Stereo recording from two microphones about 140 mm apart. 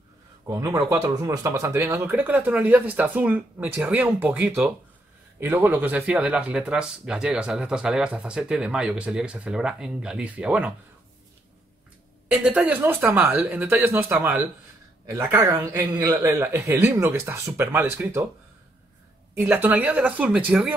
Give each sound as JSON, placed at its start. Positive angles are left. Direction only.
{"t": 0.5, "sound": "a man's voice", "side_deg": -25}
{"t": 12.3, "sound": "a man's voice", "side_deg": -10}
{"t": 19.4, "sound": "speech", "side_deg": -15}